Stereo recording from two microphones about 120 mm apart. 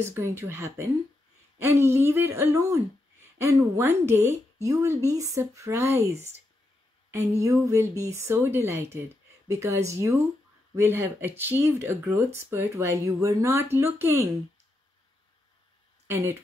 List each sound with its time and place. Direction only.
0.0 s speech: 25° right (ahead or behind)
7.1 s speech: 25° right (ahead or behind)